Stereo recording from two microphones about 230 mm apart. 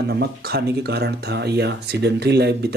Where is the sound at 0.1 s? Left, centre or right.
Right.